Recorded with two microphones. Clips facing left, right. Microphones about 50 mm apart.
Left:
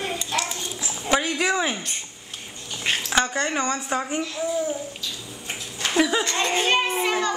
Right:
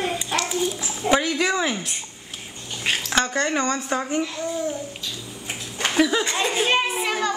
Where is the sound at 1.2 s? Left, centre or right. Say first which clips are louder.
Right 1 dB; centre.